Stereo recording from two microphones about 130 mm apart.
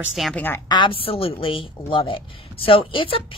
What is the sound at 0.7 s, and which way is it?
A woman's voice, 40° left (ahead or behind).